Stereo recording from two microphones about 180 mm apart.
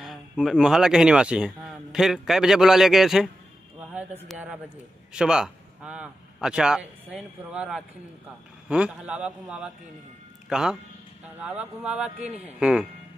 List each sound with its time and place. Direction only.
0.0 s speech: centre (ahead or behind)
4.3 s a man's voice: 5° right (ahead or behind)
12.2 s a man's voice: 35° right (ahead or behind)
12.5 s a man's voice: 5° right (ahead or behind)